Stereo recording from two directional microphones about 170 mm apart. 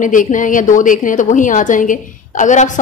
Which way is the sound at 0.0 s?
50° left (ahead or behind).